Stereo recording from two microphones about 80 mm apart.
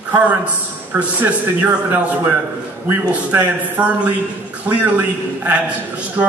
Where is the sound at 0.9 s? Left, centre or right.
Right.